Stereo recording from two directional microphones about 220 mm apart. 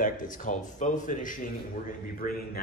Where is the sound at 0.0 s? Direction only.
35° left (ahead or behind).